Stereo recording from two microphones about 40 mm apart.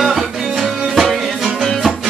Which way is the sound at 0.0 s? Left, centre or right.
Centre.